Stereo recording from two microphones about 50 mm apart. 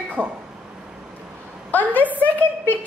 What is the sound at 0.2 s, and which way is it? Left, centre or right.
Speech, right.